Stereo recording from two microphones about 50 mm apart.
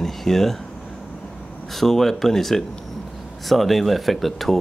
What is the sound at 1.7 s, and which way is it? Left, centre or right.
Speech, centre.